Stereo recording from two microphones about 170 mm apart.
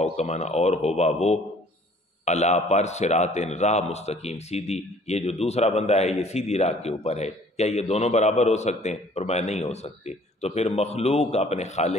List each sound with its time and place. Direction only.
0.0 s a man's voice: 40° left (ahead or behind)